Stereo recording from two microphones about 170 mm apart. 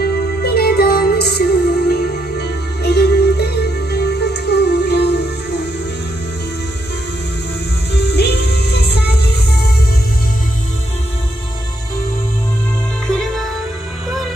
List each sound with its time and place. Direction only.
0.0 s music: 65° left (ahead or behind); by 5.7 s 85° left
7.9 s music: 75° left (ahead or behind)
13.0 s music: 5° left (ahead or behind)